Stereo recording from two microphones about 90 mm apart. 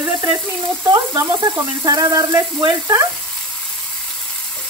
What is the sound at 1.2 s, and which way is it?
Speech, 40° right (ahead or behind).